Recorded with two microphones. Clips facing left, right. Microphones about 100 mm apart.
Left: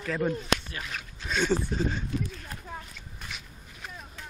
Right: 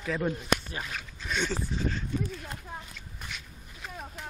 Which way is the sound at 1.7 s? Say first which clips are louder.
Left 4 dB; 50° left (ahead or behind).